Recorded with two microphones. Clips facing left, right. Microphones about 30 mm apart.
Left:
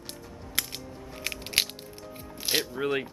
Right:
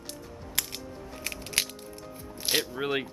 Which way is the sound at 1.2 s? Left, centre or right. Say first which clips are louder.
Left 3 dB; left.